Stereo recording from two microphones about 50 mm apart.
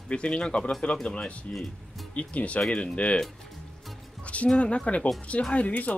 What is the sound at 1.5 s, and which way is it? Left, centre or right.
Speech, centre.